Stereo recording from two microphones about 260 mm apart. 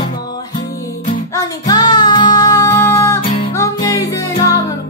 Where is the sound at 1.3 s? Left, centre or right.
Centre.